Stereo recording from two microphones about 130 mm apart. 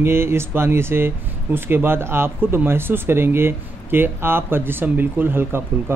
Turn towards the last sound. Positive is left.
turn(degrees=-20)  # may be behind; listen again after turning